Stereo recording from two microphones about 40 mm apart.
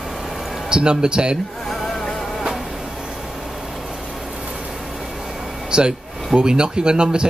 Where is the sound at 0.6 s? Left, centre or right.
Right.